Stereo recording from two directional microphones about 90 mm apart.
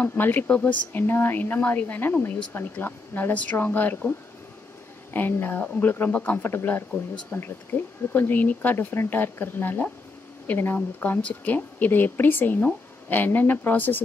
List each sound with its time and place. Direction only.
0.0 s a woman's voice: 25° left (ahead or behind)
5.1 s a woman's voice: 20° left (ahead or behind)